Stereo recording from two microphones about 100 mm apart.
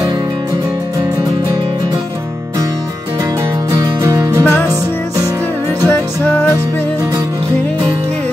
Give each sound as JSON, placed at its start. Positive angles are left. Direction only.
{"t": 3.7, "sound": "music", "side_deg": -30}